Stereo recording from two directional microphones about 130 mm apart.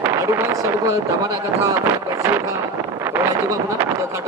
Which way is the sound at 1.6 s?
20° right (ahead or behind).